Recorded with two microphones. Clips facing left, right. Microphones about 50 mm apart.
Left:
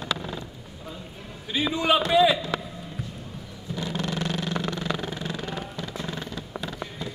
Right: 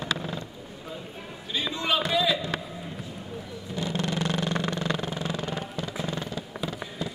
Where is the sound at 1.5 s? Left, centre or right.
Centre.